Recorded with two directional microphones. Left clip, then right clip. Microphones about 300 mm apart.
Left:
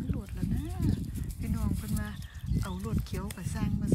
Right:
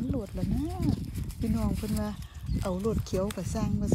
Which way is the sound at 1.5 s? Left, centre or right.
Centre.